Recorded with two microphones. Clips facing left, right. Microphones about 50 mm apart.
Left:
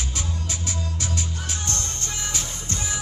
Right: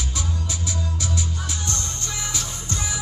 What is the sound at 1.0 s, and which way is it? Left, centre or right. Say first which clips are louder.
Music: right 2 dB; left.